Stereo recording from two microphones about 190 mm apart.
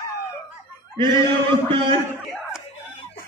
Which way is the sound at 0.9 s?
25° right (ahead or behind).